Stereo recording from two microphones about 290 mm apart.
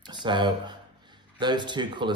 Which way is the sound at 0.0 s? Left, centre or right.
Centre.